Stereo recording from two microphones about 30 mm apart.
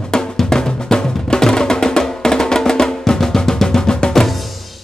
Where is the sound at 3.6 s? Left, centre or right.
Left.